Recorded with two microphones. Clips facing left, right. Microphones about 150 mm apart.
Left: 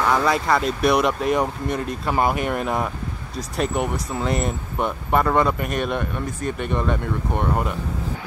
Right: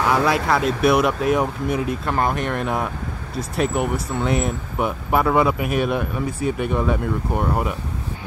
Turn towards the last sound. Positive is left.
turn(degrees=-5)  # may be behind; listen again after turning